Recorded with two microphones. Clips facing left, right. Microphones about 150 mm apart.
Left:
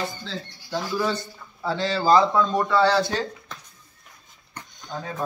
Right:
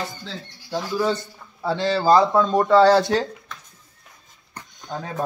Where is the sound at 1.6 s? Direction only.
35° right (ahead or behind).